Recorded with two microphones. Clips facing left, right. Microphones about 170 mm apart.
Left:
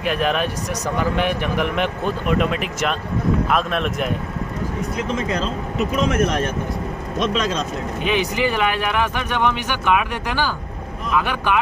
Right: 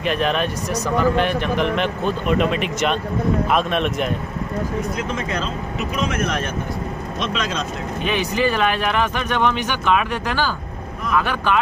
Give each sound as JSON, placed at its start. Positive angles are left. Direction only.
{"t": 0.0, "sound": "speech", "side_deg": 5}
{"t": 7.2, "sound": "speech", "side_deg": 40}
{"t": 8.0, "sound": "speech", "side_deg": 15}